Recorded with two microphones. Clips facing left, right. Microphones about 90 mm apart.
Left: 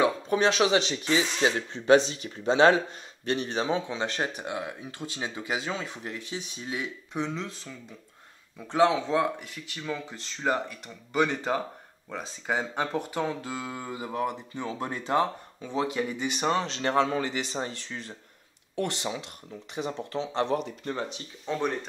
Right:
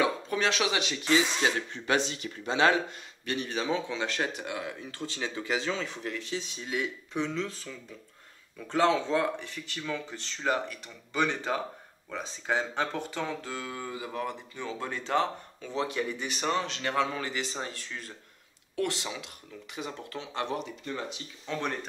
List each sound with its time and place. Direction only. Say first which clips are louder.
0.0 s speech: left 4 dB; 25° left (ahead or behind)
8.5 s speech: left 2 dB; 15° left (ahead or behind)
19.7 s speech: left 6 dB; 25° left (ahead or behind)
21.5 s speech: left 4 dB; 20° left (ahead or behind)